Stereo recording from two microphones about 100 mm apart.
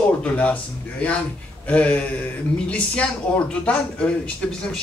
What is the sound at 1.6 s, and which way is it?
A man's voice, 15° left (ahead or behind).